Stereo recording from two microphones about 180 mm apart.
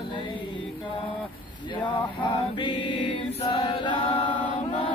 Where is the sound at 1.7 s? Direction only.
30° left (ahead or behind).